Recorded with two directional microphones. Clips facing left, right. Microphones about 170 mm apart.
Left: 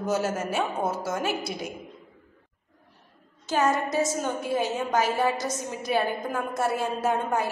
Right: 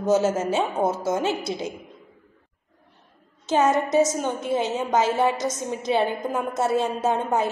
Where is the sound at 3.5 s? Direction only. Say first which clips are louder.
Right 4 dB; 20° right (ahead or behind).